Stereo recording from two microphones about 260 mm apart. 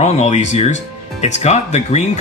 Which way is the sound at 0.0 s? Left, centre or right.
Left.